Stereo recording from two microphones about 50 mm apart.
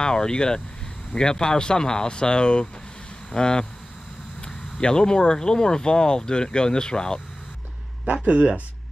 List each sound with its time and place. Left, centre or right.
0.0 s speech: centre
4.7 s speech: centre
8.3 s speech: right